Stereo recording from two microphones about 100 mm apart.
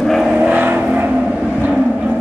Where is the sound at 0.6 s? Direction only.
15° right (ahead or behind).